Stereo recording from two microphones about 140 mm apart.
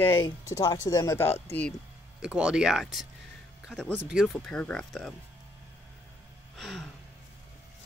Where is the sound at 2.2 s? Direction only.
5° right (ahead or behind).